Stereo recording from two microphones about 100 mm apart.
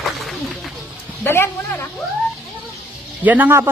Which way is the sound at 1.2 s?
25° left (ahead or behind).